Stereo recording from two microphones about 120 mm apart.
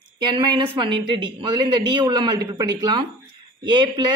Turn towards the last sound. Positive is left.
turn(degrees=-40)  # may be behind; listen again after turning